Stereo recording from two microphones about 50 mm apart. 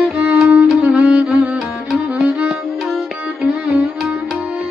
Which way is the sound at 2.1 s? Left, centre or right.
Right.